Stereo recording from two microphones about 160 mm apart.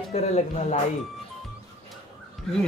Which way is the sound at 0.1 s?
45° left (ahead or behind).